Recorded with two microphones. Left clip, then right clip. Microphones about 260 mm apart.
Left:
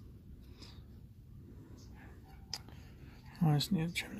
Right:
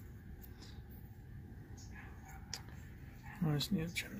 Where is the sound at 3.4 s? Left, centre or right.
Left.